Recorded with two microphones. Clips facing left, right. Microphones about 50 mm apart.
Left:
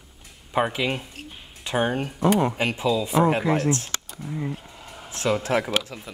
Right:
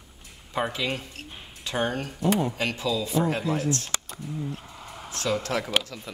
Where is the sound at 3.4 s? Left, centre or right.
Left.